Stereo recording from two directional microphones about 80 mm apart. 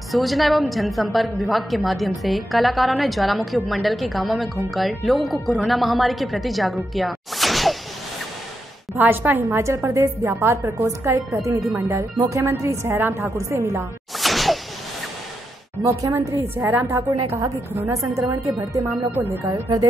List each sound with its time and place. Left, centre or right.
0.1 s a woman's voice: centre
8.9 s a woman's voice: right
14.2 s whoosh: centre
15.8 s a woman's voice: right
16.5 s speech: right
17.4 s a woman's voice: right
18.9 s speech: right
19.4 s speech: right